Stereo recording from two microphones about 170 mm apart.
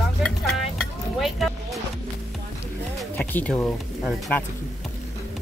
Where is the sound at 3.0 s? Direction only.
5° left (ahead or behind).